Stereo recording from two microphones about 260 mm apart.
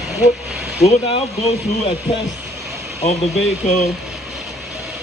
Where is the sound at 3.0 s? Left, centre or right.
Left.